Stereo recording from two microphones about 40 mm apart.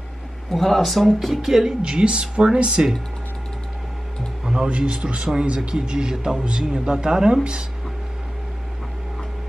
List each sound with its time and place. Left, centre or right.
0.5 s speech: centre
1.8 s a man's voice: right
4.6 s a man's voice: right